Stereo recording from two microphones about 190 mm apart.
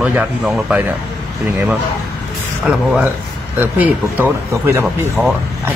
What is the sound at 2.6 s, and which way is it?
A man's voice, 5° right (ahead or behind).